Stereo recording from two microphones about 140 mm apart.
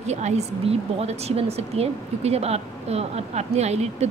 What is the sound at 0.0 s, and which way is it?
A woman's voice, 55° right (ahead or behind).